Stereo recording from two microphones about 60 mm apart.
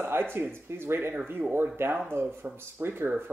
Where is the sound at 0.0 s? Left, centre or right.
Right.